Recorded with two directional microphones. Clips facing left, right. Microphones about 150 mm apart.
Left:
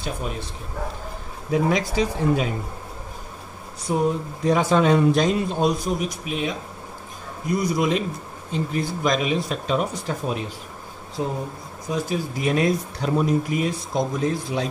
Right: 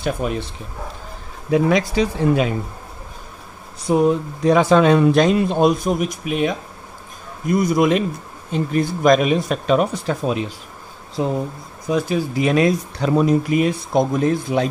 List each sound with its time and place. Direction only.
0.2 s speech: 75° right (ahead or behind)
1.5 s speech: 80° right
3.9 s speech: 75° right (ahead or behind); by 6.5 s 55° right (ahead or behind)
7.5 s speech: 50° right (ahead or behind)